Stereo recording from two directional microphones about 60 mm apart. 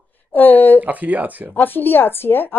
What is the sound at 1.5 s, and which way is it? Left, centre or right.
Speech, left.